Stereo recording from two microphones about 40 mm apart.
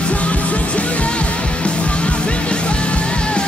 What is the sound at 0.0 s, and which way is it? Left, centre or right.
Music, left.